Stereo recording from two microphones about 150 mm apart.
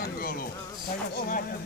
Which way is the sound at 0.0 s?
75° left (ahead or behind).